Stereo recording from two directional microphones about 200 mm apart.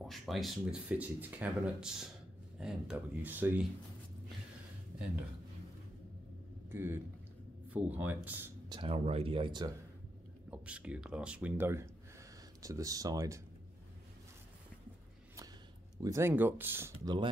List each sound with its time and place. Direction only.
0.0 s speech: centre (ahead or behind)
6.7 s speech: 10° right (ahead or behind)
8.6 s speech: 25° right (ahead or behind)
10.5 s speech: 5° right (ahead or behind)
16.0 s speech: 15° right (ahead or behind)